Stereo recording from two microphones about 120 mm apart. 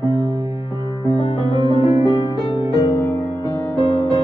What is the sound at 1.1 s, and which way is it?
Music, 60° left (ahead or behind).